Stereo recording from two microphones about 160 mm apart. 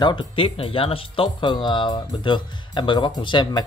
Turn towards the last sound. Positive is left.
turn(degrees=30)  # may be behind; listen again after turning